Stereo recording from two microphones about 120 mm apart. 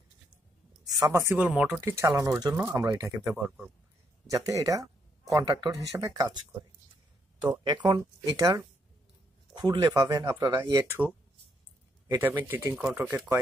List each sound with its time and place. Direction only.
1.0 s speech: 20° right (ahead or behind)
1.8 s speech: 25° right (ahead or behind)
3.3 s speech: centre (ahead or behind)
4.3 s speech: 30° right (ahead or behind)
7.6 s speech: 40° right (ahead or behind)
8.0 s speech: 25° right (ahead or behind)
9.5 s speech: 35° right (ahead or behind)
10.9 s speech: 15° right (ahead or behind)
12.2 s speech: 15° right (ahead or behind)